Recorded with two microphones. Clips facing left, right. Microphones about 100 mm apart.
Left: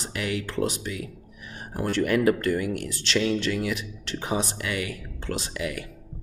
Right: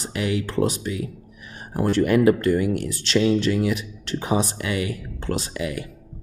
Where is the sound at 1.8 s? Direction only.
35° right (ahead or behind).